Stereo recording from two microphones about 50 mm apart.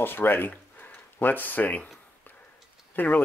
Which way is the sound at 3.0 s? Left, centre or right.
Left.